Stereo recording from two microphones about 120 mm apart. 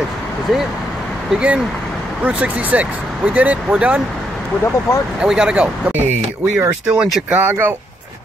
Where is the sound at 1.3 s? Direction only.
5° right (ahead or behind).